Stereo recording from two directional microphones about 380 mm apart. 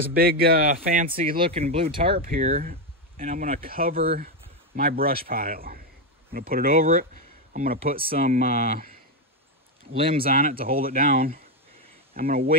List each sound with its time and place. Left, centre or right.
0.0 s speech: right
10.1 s speech: right